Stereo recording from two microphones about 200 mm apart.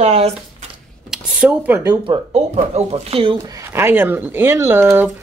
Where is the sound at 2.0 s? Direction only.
30° right (ahead or behind).